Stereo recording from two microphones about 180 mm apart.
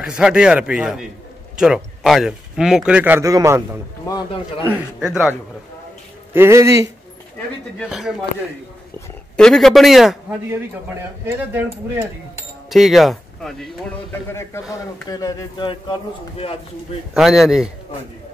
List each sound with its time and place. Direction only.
0.0 s speech: 5° right (ahead or behind)
4.1 s a man's voice: 20° left (ahead or behind)
4.7 s speech: 5° right (ahead or behind)
6.3 s speech: 15° right (ahead or behind)
9.4 s speech: centre (ahead or behind)
10.5 s speech: 15° right (ahead or behind)
12.6 s speech: centre (ahead or behind)
14.7 s a man's voice: 20° left (ahead or behind)
17.1 s speech: centre (ahead or behind)